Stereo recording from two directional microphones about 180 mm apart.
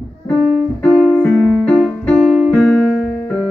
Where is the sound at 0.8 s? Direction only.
Centre (ahead or behind).